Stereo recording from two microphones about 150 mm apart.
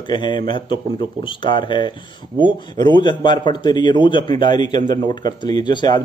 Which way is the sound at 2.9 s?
30° left (ahead or behind).